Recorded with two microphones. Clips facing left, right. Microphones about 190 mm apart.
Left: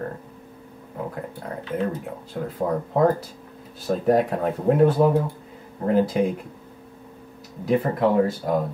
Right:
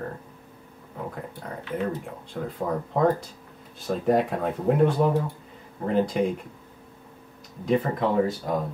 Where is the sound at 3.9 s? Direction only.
Centre (ahead or behind).